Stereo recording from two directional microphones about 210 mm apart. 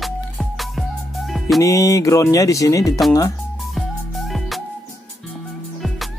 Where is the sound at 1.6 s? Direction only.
15° left (ahead or behind).